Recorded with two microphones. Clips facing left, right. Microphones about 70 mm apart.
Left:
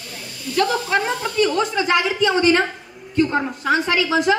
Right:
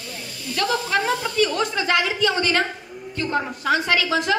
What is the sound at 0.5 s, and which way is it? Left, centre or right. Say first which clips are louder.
A woman's voice: left 3 dB; left.